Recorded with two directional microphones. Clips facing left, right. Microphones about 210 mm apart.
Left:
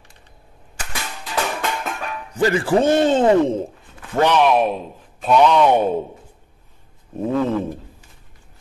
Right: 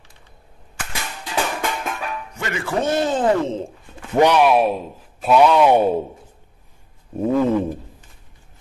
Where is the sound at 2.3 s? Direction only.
30° left (ahead or behind).